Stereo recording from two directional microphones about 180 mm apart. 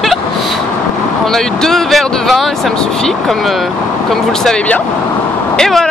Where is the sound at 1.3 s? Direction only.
Centre (ahead or behind).